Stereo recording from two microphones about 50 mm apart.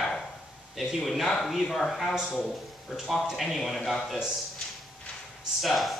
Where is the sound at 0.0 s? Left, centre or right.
Centre.